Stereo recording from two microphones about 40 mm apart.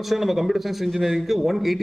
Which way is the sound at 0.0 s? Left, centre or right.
Centre.